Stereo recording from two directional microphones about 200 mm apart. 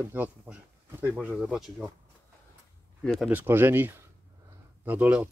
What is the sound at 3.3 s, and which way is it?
Speech, 10° right (ahead or behind).